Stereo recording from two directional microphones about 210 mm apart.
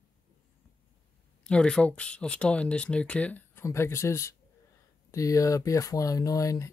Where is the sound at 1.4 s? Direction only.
5° left (ahead or behind).